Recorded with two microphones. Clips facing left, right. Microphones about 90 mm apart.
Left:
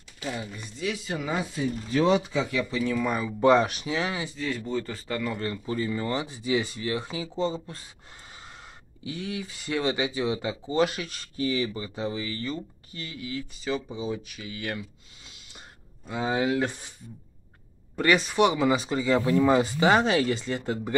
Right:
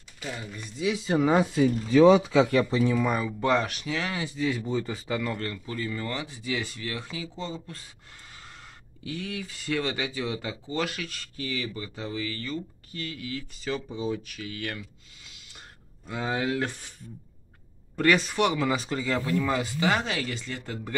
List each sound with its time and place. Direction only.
0.2 s speech: 5° left (ahead or behind)
0.9 s speech: 30° right (ahead or behind)
2.6 s speech: 30° right (ahead or behind)
3.0 s speech: 5° right (ahead or behind)
3.3 s speech: 15° left (ahead or behind)
4.2 s speech: 5° right (ahead or behind)
5.4 s speech: 20° left (ahead or behind)
15.2 s a sound: 25° left (ahead or behind)
16.1 s speech: 15° left (ahead or behind)
17.9 s speech: 5° left (ahead or behind)
18.3 s speech: 15° left (ahead or behind)
19.3 s speech: 25° left (ahead or behind)